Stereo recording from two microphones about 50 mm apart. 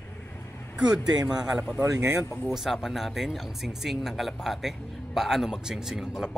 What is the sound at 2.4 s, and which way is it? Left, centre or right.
A man's voice, centre.